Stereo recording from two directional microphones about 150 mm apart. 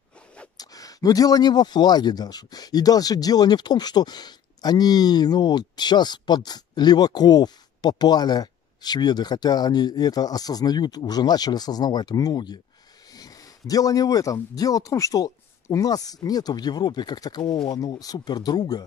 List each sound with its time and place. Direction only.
0.6 s speech: 25° left (ahead or behind)